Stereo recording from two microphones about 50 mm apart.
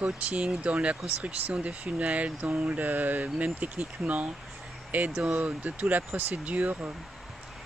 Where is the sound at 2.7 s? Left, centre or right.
Right.